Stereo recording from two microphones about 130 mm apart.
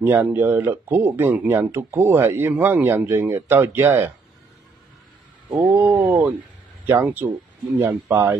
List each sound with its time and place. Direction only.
0.0 s a man's voice: 15° right (ahead or behind)
5.7 s a man's voice: 10° right (ahead or behind)